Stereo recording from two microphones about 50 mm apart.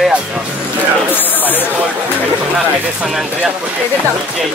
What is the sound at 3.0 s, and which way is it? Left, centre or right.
Music, centre.